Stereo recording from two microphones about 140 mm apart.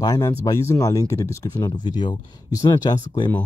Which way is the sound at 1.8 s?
30° left (ahead or behind).